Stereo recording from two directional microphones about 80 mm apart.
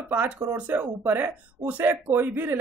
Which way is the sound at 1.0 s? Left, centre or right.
Right.